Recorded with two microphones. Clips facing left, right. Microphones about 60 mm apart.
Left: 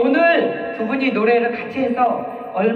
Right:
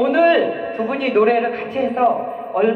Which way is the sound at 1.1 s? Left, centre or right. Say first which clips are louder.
Right 2 dB; left.